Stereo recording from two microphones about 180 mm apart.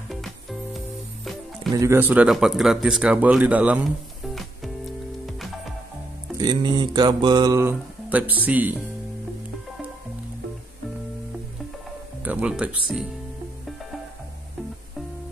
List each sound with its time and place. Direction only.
0.1 s music: centre (ahead or behind)
1.7 s speech: 15° right (ahead or behind); by 4.5 s centre (ahead or behind)
6.3 s mantra: 25° right (ahead or behind)
12.2 s speech: 10° right (ahead or behind)